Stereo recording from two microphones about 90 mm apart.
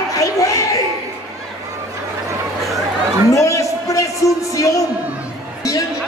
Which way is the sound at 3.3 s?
35° left (ahead or behind).